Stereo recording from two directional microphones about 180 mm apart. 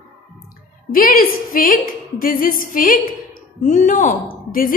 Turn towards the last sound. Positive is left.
turn(degrees=50)  # may be behind; listen again after turning